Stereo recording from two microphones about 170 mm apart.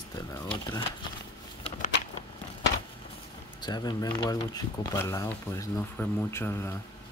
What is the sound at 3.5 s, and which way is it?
Speech, 25° left (ahead or behind).